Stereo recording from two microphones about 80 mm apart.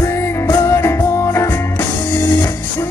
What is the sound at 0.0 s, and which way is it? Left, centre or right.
Music, left.